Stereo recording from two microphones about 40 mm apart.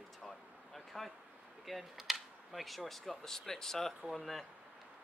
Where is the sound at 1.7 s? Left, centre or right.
Centre.